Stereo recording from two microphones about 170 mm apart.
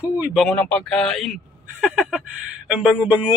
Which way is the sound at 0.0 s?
5° right (ahead or behind).